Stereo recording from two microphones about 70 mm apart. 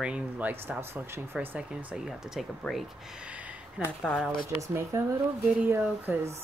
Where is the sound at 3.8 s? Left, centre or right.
Centre.